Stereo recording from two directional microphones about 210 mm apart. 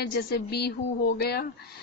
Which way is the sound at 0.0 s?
50° left (ahead or behind).